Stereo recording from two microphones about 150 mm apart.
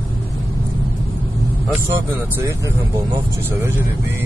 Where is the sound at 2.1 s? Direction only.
20° right (ahead or behind).